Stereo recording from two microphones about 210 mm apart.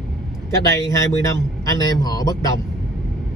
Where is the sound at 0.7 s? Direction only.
15° left (ahead or behind).